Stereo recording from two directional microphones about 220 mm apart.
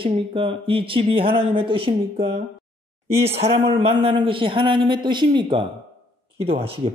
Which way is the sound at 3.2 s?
25° right (ahead or behind).